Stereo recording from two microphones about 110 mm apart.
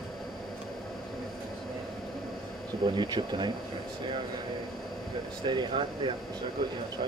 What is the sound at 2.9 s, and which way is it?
Speech, 45° right (ahead or behind).